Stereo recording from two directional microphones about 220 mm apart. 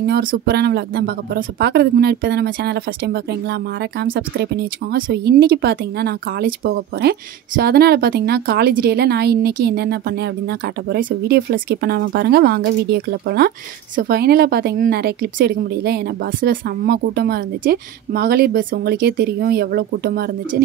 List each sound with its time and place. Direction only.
0.0 s speech: 45° right (ahead or behind)